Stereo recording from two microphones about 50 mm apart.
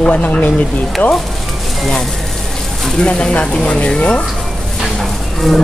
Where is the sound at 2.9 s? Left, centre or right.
Centre.